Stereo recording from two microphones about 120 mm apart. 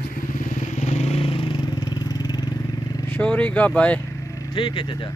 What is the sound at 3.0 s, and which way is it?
Speech, 15° left (ahead or behind).